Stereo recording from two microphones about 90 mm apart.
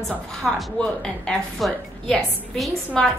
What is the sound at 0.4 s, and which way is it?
A woman's voice, 5° left (ahead or behind).